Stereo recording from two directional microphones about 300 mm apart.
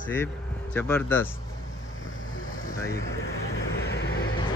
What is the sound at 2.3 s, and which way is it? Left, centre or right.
Vehicle, left.